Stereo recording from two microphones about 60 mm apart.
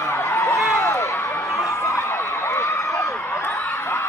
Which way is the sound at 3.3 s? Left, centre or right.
Left.